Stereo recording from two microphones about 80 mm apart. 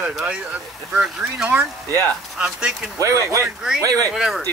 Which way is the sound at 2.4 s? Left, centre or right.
Centre.